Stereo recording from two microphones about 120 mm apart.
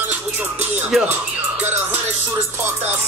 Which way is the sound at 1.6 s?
15° right (ahead or behind).